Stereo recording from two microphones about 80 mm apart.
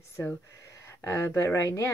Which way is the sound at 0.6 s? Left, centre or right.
Left.